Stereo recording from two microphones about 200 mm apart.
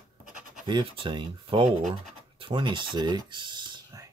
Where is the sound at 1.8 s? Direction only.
35° right (ahead or behind).